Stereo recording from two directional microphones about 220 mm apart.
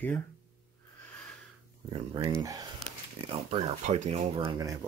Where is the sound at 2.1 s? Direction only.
15° right (ahead or behind).